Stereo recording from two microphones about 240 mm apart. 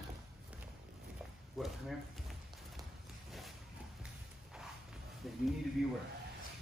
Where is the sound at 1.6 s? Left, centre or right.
Centre.